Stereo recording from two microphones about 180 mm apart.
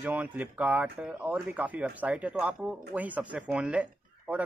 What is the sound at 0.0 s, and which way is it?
A man's voice, 10° right (ahead or behind).